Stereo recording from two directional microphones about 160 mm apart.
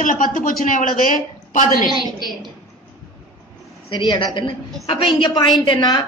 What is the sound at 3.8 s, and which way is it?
A woman's voice, 30° left (ahead or behind).